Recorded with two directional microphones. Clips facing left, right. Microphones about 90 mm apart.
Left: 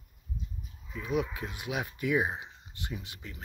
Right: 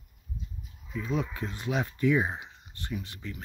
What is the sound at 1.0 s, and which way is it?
Speech, 15° left (ahead or behind).